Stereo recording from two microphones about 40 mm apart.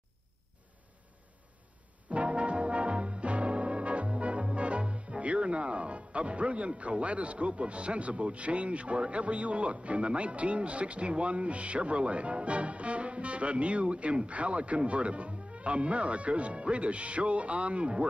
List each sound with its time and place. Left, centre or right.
2.0 s music: right
5.2 s speech: right